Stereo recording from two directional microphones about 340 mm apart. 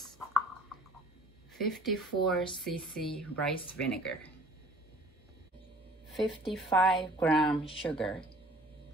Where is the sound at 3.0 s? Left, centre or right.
Centre.